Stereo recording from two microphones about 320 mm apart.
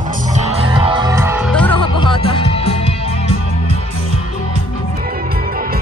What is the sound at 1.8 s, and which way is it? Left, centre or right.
Music, centre.